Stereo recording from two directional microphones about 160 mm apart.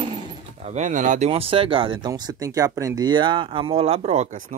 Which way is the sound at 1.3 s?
35° right (ahead or behind).